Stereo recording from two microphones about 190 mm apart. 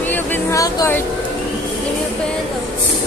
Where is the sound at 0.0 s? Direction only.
10° left (ahead or behind).